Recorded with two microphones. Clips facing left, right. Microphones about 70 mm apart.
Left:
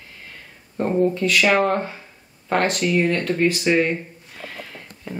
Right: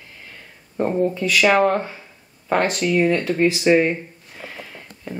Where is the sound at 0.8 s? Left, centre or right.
Centre.